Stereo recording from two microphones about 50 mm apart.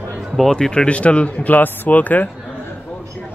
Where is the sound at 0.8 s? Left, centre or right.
Left.